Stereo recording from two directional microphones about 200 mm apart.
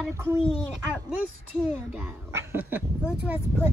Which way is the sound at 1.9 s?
10° right (ahead or behind).